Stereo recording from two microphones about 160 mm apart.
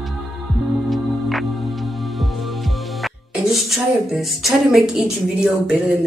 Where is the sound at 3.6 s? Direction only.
Centre (ahead or behind).